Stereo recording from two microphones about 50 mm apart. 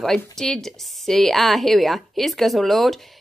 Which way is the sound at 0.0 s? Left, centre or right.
Centre.